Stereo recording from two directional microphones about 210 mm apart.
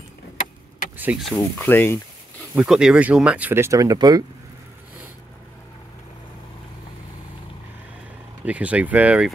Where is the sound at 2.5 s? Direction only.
5° right (ahead or behind).